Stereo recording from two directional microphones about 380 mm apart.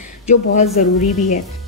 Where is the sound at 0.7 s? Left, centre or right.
Centre.